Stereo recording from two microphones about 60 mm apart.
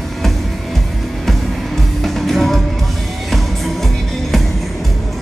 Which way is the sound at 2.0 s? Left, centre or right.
Centre.